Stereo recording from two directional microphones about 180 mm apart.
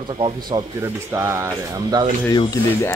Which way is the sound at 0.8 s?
15° right (ahead or behind).